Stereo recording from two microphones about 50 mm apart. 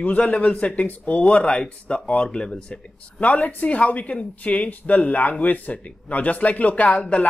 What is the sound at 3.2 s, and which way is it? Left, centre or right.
Speech, left.